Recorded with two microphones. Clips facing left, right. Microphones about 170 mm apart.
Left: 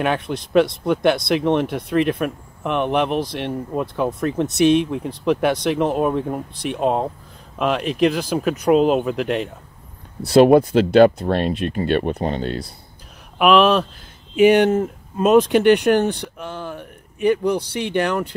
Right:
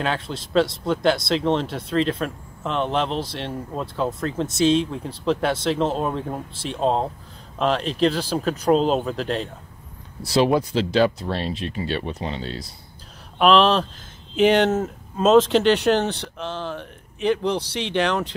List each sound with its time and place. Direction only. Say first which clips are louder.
0.0 s speech: left 4 dB; 20° left (ahead or behind)
10.2 s speech: left 7 dB; 55° left (ahead or behind)
13.4 s speech: left 2 dB; 10° left (ahead or behind)